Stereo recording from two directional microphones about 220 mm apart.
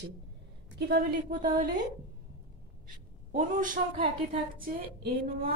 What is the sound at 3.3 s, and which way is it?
Speech, 35° right (ahead or behind).